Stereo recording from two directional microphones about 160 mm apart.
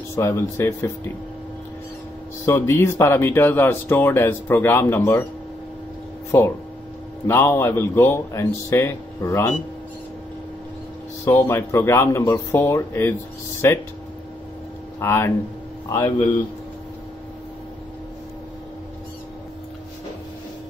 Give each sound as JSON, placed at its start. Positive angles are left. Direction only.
{"t": 0.1, "sound": "speech", "side_deg": 15}
{"t": 2.4, "sound": "speech", "side_deg": 15}
{"t": 7.2, "sound": "speech", "side_deg": 15}
{"t": 11.2, "sound": "speech", "side_deg": 15}
{"t": 15.0, "sound": "speech", "side_deg": 15}